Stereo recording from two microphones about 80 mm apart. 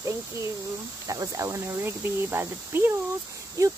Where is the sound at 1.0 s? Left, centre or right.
Right.